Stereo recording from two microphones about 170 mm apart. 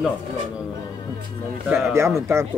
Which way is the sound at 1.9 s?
15° right (ahead or behind).